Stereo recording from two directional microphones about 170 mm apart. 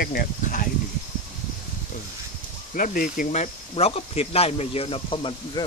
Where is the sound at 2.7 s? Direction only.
55° left (ahead or behind).